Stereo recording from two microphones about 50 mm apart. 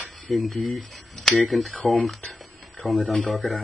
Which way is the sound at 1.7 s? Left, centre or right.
Left.